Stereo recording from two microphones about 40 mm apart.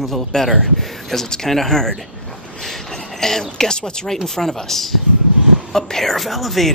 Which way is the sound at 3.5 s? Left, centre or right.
Centre.